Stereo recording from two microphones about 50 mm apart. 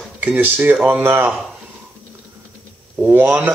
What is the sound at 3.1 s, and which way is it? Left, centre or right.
Speech, right.